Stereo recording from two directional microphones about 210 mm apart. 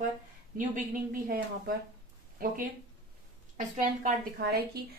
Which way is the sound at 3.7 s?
45° right (ahead or behind).